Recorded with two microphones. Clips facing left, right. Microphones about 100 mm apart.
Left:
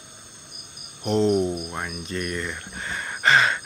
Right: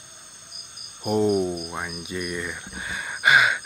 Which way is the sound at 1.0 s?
10° right (ahead or behind).